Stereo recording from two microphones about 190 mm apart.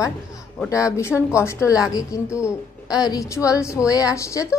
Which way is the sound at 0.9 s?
15° left (ahead or behind).